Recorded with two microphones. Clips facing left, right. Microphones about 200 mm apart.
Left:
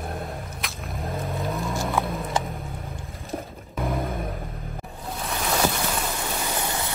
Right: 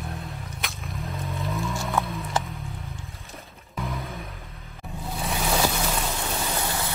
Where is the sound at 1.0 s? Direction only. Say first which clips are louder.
Left 4 dB; 50° left (ahead or behind).